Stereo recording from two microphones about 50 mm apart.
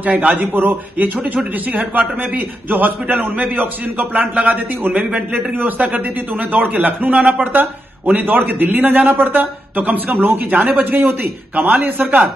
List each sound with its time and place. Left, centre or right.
0.0 s a man's voice: right
8.2 s a man's voice: right